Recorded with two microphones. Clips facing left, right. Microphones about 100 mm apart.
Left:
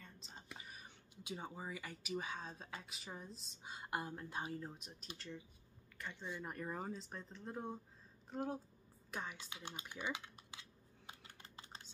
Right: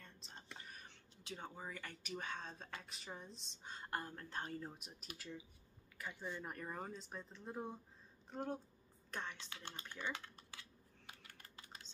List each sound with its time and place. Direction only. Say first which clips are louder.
0.0 s speech: left 1 dB; centre (ahead or behind)
9.1 s computer keyboard: left 1 dB; 10° left (ahead or behind); by 11.8 s 25° left (ahead or behind)